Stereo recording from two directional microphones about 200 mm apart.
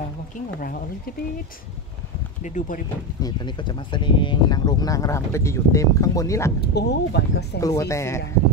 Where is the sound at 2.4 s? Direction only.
40° left (ahead or behind).